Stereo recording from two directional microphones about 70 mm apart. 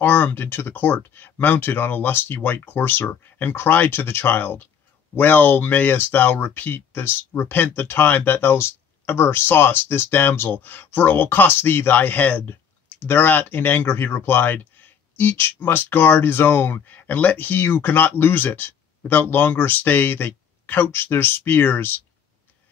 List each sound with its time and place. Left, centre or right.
0.0 s speech: left